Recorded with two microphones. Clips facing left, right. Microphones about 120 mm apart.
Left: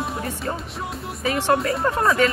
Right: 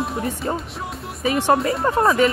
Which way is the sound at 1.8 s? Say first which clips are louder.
Right 3 dB; 5° right (ahead or behind).